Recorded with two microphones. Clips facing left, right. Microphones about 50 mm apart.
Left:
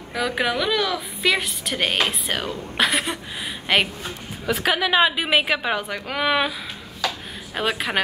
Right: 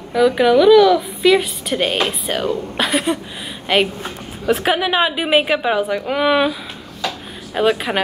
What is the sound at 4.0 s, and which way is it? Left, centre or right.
Speech, right.